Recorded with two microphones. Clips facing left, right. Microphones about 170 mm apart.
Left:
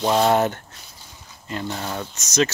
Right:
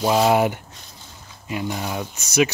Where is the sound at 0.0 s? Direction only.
5° right (ahead or behind).